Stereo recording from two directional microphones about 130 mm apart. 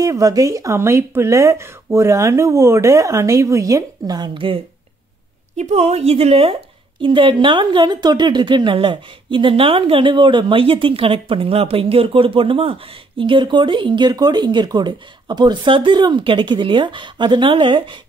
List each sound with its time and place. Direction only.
0.0 s speech: 25° right (ahead or behind)
5.6 s a woman's voice: 60° right (ahead or behind); by 18.0 s 40° right (ahead or behind)